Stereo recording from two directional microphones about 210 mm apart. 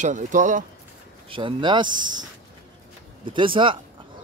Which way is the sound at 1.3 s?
25° right (ahead or behind).